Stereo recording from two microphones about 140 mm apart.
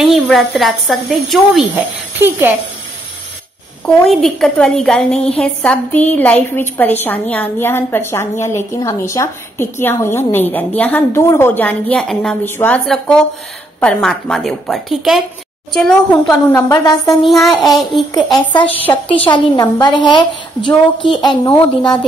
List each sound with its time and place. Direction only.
0.0 s a woman's voice: centre (ahead or behind)
2.1 s speech: 15° right (ahead or behind)
3.8 s a woman's voice: 5° left (ahead or behind)
16.4 s a woman's voice: 15° left (ahead or behind)
16.7 s speech: 25° left (ahead or behind)
17.2 s a woman's voice: centre (ahead or behind)
18.7 s a woman's voice: 10° left (ahead or behind)
19.0 s a woman's voice: 40° left (ahead or behind)